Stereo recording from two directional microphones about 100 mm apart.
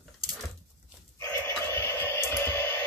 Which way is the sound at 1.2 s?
30° left (ahead or behind).